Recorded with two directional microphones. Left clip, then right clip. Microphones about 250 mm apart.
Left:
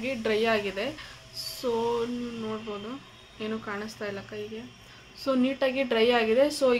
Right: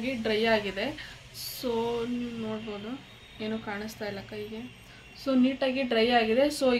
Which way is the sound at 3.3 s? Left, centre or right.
Centre.